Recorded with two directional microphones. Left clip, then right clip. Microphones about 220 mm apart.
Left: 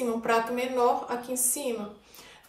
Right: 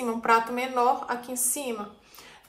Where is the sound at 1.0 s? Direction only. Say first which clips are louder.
Even; 10° left (ahead or behind).